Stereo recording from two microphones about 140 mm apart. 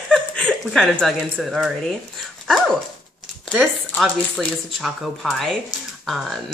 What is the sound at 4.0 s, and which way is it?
Speech, centre (ahead or behind).